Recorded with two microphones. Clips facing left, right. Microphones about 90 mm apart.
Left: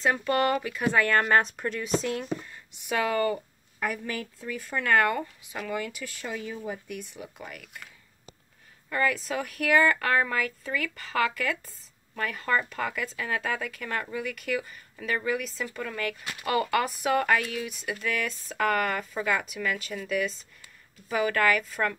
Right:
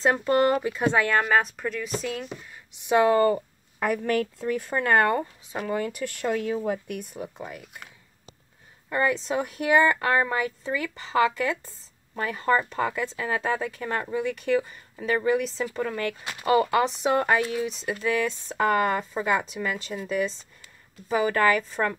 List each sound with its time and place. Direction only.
0.0 s speech: 30° right (ahead or behind)
1.2 s speech: 5° right (ahead or behind)
2.5 s speech: 20° right (ahead or behind)
3.8 s speech: 50° right (ahead or behind)
5.9 s speech: 60° right (ahead or behind)
7.3 s speech: 25° right (ahead or behind)